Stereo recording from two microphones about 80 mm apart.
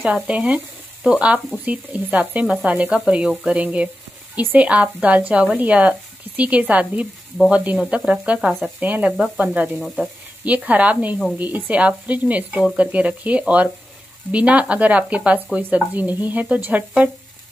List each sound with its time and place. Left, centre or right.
0.0 s speech: centre
9.8 s sizzle: centre
10.4 s speech: centre